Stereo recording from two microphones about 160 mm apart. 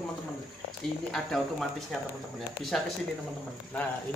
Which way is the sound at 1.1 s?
Centre (ahead or behind).